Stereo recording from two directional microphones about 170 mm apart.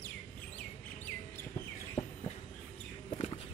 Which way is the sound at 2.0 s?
35° left (ahead or behind).